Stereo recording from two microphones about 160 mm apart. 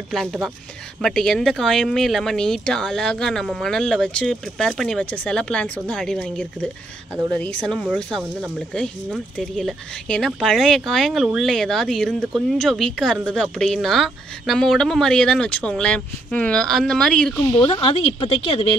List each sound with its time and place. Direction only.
0.1 s speech: centre (ahead or behind)
17.6 s speech: 35° left (ahead or behind)